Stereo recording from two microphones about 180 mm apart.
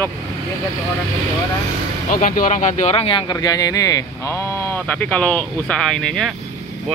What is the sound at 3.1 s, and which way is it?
Speech, 25° left (ahead or behind).